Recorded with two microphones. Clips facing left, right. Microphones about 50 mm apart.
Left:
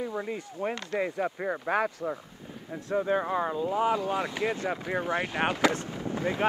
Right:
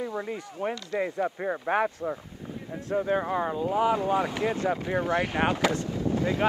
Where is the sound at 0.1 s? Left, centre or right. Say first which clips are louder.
Right 1 dB; centre.